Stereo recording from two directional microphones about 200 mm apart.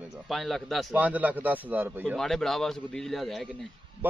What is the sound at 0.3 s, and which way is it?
A man's voice, centre (ahead or behind).